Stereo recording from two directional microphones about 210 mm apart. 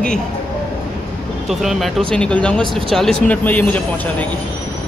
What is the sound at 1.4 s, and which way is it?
Speech, centre (ahead or behind).